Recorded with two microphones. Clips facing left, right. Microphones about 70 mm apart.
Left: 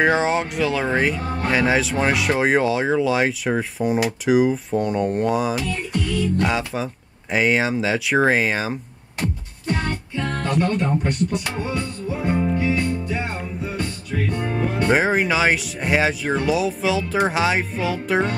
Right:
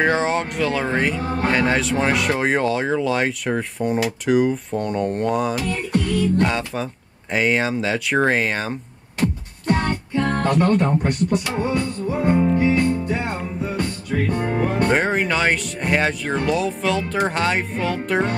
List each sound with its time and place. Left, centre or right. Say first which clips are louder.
0.0 s speech: left 1 dB; centre
5.7 s music: right 3 dB; right
6.4 s speech: even; centre
9.7 s music: right 4 dB; right
12.3 s music: right 4 dB; centre
12.5 s music: right 4 dB; right
14.9 s speech: left 1 dB; centre